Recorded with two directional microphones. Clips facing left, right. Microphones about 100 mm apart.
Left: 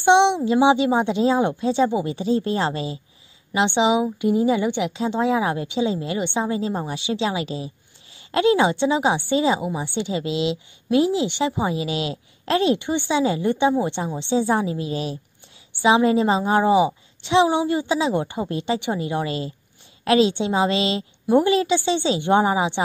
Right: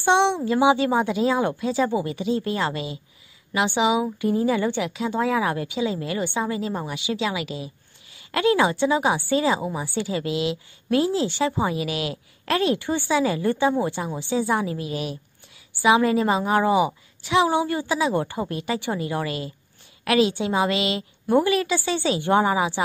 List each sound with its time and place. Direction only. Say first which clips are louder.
0.0 s a woman's voice: left 4 dB; 20° left (ahead or behind)
2.1 s a woman's voice: left 3 dB; 30° left (ahead or behind)